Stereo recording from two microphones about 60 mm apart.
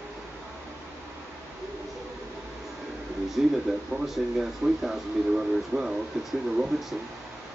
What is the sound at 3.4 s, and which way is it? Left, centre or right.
Speech, centre.